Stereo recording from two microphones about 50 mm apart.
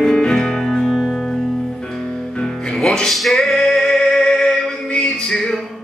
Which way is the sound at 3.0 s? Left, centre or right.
Centre.